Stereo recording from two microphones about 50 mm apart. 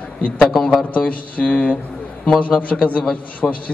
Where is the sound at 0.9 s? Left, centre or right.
Left.